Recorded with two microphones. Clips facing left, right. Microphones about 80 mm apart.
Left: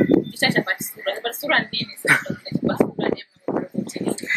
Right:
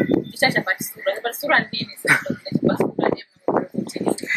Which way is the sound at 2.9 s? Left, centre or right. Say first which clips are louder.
Right 3 dB; right.